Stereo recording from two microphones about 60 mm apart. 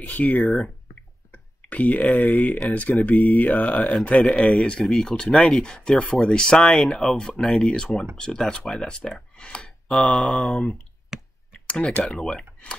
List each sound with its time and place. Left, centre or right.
0.0 s speech: left
1.7 s speech: left
4.8 s speech: centre
5.1 s speech: centre
12.0 s speech: centre